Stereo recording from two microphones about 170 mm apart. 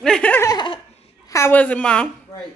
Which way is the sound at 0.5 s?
30° left (ahead or behind).